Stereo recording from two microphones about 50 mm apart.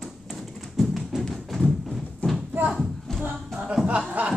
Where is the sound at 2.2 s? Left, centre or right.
Left.